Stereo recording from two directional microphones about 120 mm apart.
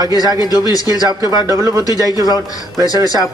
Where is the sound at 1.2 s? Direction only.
25° right (ahead or behind).